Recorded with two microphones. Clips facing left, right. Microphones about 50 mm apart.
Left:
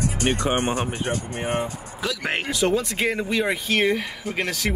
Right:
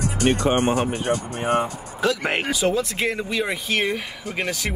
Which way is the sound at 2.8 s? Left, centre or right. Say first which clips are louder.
Left 1 dB; centre.